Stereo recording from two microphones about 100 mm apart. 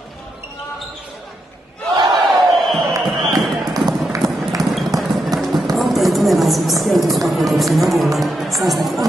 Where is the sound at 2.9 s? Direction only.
40° right (ahead or behind).